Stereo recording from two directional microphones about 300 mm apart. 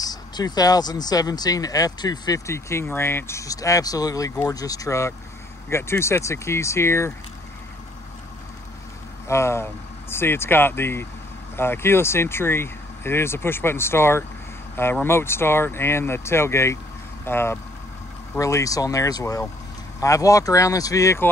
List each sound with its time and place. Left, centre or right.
0.0 s speech: centre
9.3 s speech: centre